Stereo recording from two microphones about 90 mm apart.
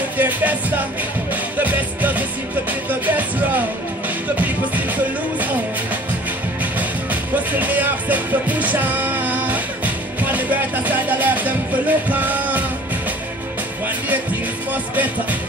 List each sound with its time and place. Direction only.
0.2 s music: 20° right (ahead or behind)
7.5 s music: 20° right (ahead or behind)